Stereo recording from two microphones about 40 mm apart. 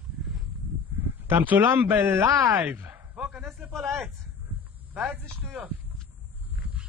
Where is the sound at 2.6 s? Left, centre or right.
Right.